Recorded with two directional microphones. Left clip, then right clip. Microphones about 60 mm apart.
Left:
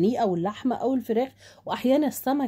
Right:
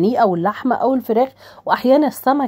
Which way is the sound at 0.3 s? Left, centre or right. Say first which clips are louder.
Right 9 dB; right.